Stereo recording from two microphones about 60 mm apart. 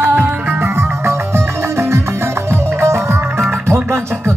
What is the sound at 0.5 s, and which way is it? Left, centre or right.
Music, right.